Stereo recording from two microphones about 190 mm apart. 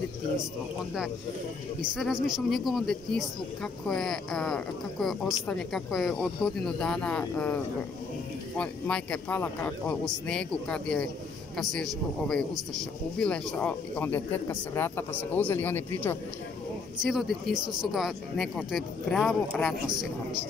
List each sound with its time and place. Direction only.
1.8 s a man's voice: centre (ahead or behind)
8.5 s a man's voice: 5° left (ahead or behind)
17.0 s a man's voice: centre (ahead or behind)